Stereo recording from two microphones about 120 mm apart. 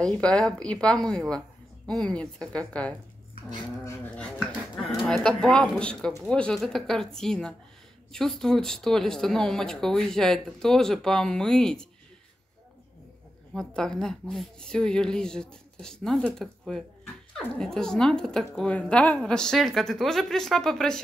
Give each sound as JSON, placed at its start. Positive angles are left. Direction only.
{"t": 0.0, "sound": "a woman's voice", "side_deg": 5}
{"t": 3.8, "sound": "dog", "side_deg": 20}
{"t": 4.4, "sound": "speech", "side_deg": 0}
{"t": 13.5, "sound": "speech", "side_deg": 5}